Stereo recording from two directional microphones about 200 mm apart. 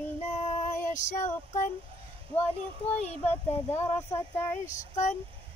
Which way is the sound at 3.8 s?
15° left (ahead or behind).